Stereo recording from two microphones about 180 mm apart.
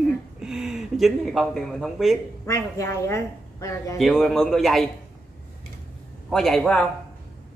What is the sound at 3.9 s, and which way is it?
Speech, centre (ahead or behind).